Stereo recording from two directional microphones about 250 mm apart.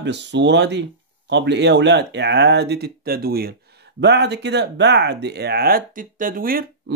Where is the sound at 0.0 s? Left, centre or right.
Right.